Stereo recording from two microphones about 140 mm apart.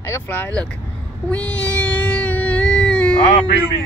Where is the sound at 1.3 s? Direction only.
10° left (ahead or behind).